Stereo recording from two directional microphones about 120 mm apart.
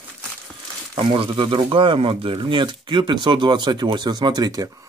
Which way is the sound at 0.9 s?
50° right (ahead or behind).